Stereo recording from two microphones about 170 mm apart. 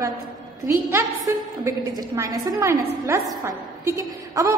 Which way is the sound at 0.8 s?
15° right (ahead or behind).